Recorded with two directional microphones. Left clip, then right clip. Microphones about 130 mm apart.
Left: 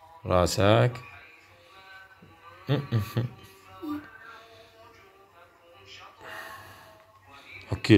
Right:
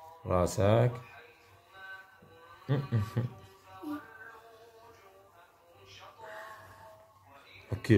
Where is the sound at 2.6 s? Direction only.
5° left (ahead or behind).